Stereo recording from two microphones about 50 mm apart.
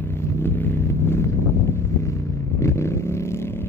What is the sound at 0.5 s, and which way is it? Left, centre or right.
Vehicle, left.